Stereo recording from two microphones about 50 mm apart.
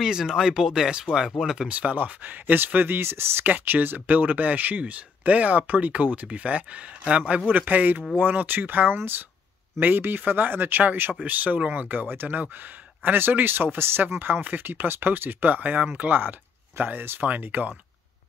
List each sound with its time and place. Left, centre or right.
0.0 s speech: centre
1.7 s speech: right
3.4 s speech: right
7.4 s speech: right